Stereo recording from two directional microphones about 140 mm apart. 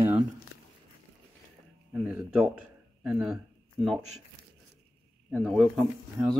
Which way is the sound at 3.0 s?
5° right (ahead or behind).